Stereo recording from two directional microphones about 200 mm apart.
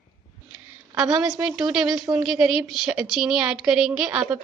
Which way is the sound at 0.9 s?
5° right (ahead or behind).